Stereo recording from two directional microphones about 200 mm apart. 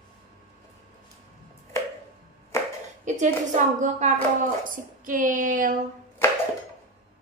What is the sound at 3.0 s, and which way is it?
A woman's voice, 35° right (ahead or behind).